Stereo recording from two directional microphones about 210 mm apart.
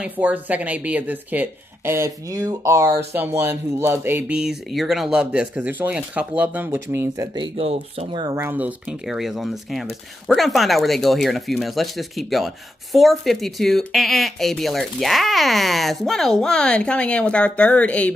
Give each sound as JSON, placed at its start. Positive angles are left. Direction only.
{"t": 0.0, "sound": "speech", "side_deg": -5}
{"t": 7.5, "sound": "speech", "side_deg": -30}